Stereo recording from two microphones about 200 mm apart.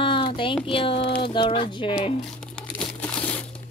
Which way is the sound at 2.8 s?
5° left (ahead or behind).